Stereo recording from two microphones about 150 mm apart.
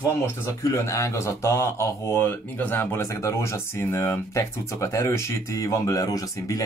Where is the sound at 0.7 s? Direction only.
20° left (ahead or behind).